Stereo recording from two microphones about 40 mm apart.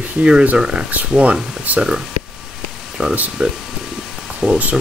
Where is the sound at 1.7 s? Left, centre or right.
Right.